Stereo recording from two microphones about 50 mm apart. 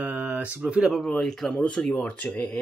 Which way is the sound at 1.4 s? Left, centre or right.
Left.